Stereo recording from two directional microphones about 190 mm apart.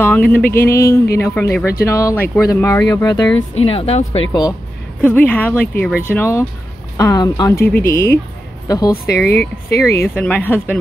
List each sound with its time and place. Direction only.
0.0 s speech: 10° left (ahead or behind)
3.5 s speech: 30° left (ahead or behind)
5.0 s speech: 10° left (ahead or behind)
8.9 s speech: 55° left (ahead or behind)
9.7 s speech: 15° left (ahead or behind)